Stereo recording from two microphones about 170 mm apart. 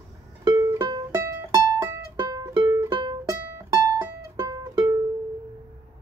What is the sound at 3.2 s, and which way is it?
Music, 15° right (ahead or behind).